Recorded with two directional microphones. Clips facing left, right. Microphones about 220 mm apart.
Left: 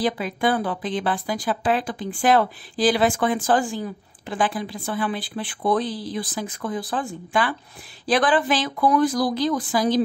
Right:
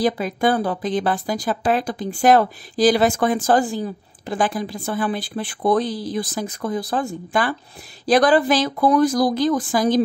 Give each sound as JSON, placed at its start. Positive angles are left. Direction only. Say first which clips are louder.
{"t": 0.0, "sound": "speech", "louder": "right 3 dB", "side_deg": -40}